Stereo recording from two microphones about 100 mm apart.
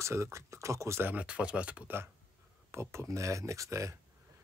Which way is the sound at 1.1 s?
10° right (ahead or behind).